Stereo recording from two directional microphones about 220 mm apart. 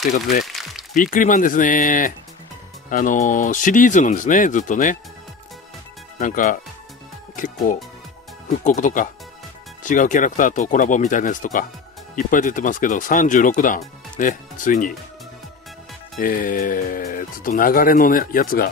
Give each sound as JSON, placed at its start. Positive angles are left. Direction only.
{"t": 0.5, "sound": "speech", "side_deg": 0}
{"t": 0.9, "sound": "speech", "side_deg": 35}
{"t": 6.1, "sound": "speech", "side_deg": 35}
{"t": 16.2, "sound": "speech", "side_deg": 40}